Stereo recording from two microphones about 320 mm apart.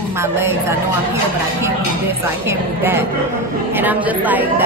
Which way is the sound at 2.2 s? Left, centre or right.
Centre.